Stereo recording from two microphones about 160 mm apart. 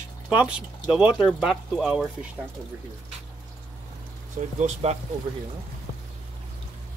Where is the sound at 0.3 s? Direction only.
5° right (ahead or behind).